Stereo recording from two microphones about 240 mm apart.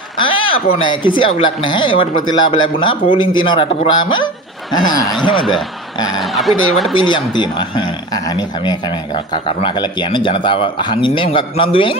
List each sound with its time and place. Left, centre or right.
0.2 s speech: left
6.2 s speech: centre
6.9 s speech: centre